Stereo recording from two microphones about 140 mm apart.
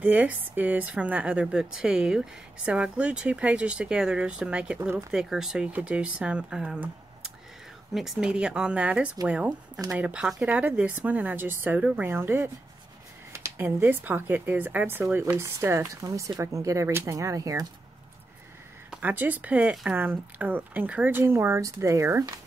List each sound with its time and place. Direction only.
0.0 s speech: 10° right (ahead or behind)
18.9 s speech: 10° right (ahead or behind)